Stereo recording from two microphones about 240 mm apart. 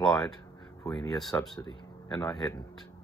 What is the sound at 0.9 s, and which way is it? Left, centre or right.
Speech, centre.